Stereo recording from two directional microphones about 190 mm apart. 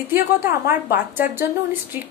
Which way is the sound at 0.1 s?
10° right (ahead or behind).